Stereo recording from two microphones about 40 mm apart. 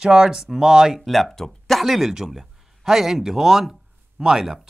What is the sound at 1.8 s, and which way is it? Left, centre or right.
Speech, centre.